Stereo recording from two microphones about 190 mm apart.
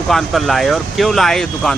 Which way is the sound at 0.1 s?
Centre (ahead or behind).